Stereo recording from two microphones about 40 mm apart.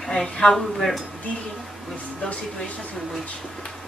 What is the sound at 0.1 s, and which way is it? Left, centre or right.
Speech, centre.